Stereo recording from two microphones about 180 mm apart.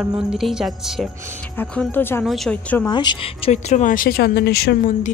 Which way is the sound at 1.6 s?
10° left (ahead or behind).